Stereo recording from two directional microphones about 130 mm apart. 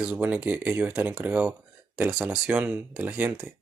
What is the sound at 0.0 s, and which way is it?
Speech, 10° right (ahead or behind).